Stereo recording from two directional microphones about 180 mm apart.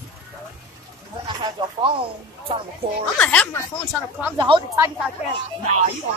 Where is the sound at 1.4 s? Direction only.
25° right (ahead or behind).